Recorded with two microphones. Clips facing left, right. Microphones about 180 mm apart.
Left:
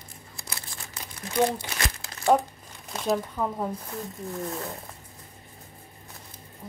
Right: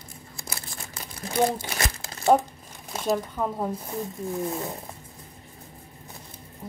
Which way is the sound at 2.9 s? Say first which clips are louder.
Right 1 dB; 5° right (ahead or behind).